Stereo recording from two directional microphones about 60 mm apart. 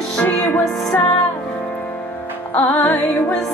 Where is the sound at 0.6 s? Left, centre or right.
Centre.